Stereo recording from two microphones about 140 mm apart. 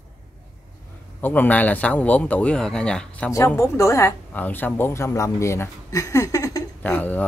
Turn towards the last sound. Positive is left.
turn(degrees=10)  # may be behind; listen again after turning